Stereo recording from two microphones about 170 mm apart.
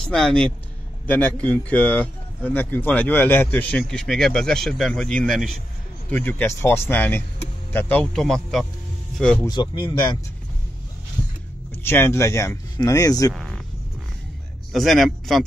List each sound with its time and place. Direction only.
0.1 s a man's voice: 5° left (ahead or behind)
9.5 s speech: 30° left (ahead or behind)
11.7 s speech: 15° left (ahead or behind)
13.3 s speech: centre (ahead or behind)
14.7 s a man's voice: centre (ahead or behind)